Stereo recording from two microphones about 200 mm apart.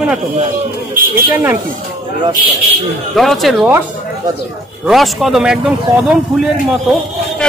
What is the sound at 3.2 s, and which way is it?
Speech, centre (ahead or behind).